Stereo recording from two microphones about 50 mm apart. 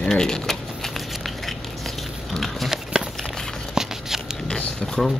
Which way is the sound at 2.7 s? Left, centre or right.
Centre.